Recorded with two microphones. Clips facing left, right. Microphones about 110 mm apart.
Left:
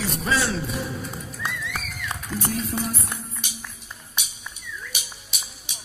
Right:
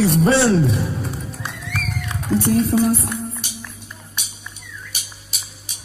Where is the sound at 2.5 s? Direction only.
65° right (ahead or behind).